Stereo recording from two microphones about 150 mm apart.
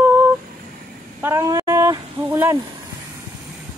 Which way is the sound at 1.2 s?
15° right (ahead or behind).